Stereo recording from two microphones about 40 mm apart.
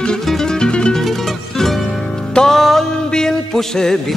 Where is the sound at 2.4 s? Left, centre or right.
Centre.